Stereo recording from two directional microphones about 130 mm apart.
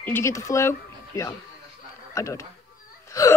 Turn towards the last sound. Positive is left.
turn(degrees=30)  # may be behind; listen again after turning